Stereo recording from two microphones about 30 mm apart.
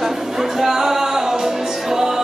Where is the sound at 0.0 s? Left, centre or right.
Centre.